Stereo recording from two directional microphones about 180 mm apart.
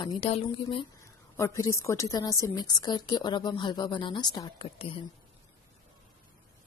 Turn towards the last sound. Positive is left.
turn(degrees=30)  # may be behind; listen again after turning